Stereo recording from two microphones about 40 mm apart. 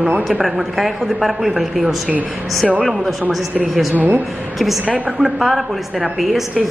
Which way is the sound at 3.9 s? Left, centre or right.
Right.